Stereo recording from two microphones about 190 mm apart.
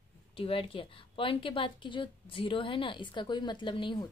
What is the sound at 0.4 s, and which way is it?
A woman's voice, 30° left (ahead or behind).